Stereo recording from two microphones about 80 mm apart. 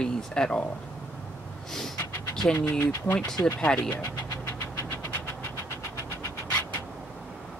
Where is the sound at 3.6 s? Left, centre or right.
Centre.